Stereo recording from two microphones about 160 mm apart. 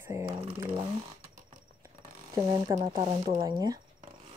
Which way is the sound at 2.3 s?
20° right (ahead or behind).